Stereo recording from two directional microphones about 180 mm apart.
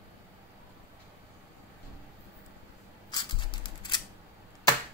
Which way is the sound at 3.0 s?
25° left (ahead or behind).